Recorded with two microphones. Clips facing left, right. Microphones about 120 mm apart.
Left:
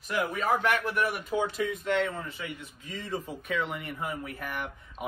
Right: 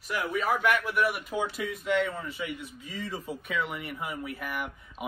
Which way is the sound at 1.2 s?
5° right (ahead or behind).